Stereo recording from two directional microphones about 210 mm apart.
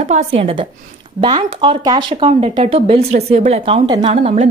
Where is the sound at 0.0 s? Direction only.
30° right (ahead or behind).